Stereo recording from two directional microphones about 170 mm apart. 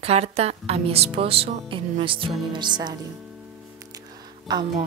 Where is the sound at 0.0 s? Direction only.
35° right (ahead or behind).